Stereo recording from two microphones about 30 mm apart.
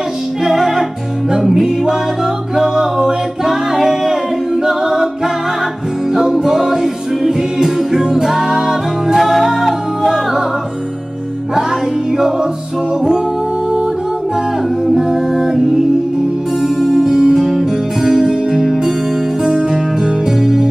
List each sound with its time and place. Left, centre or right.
0.4 s music: centre
4.6 s a capella: centre
6.1 s music: centre
15.0 s music: centre
16.6 s music: centre
17.0 s music: centre
17.4 s music: centre
18.1 s music: centre